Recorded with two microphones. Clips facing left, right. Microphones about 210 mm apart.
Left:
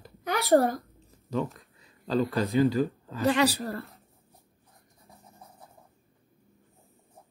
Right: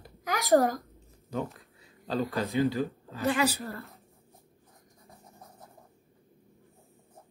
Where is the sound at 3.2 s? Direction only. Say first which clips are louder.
Left 3 dB; 40° left (ahead or behind).